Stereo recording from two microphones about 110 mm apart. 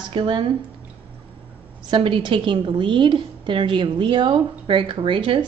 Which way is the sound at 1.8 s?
55° right (ahead or behind).